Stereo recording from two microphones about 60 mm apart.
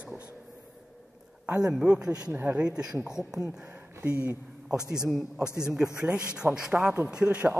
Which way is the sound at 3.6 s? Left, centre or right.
Right.